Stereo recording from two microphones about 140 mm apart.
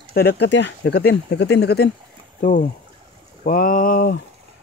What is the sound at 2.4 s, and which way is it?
Speech, 70° left (ahead or behind).